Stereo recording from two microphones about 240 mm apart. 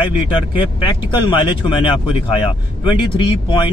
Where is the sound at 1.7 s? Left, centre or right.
Left.